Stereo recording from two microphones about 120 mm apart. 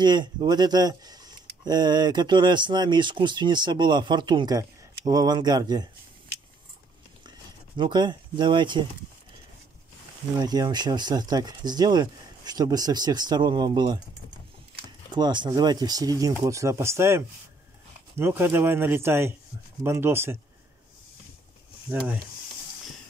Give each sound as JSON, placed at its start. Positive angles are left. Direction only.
{"t": 0.0, "sound": "speech", "side_deg": -40}
{"t": 7.2, "sound": "a sound", "side_deg": -40}
{"t": 10.3, "sound": "speech", "side_deg": -35}
{"t": 15.1, "sound": "speech", "side_deg": -40}
{"t": 21.9, "sound": "speech", "side_deg": -10}